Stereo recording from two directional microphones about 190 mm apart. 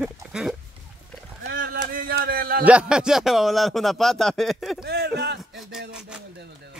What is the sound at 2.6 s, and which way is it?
Speech, 5° right (ahead or behind).